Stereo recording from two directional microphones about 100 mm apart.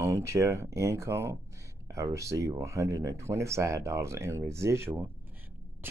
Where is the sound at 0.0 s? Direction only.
30° right (ahead or behind).